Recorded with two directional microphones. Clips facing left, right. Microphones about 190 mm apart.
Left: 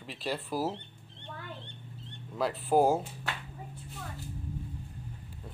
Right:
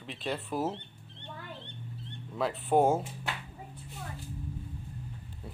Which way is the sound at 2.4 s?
Centre (ahead or behind).